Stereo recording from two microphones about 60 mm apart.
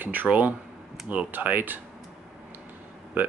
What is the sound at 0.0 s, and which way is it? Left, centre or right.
Speech, right.